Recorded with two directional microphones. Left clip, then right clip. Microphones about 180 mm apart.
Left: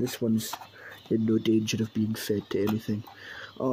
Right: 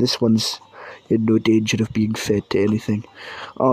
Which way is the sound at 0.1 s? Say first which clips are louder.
Right 11 dB; 25° right (ahead or behind).